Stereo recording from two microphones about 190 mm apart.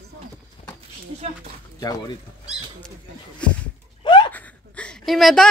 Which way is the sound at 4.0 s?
25° left (ahead or behind).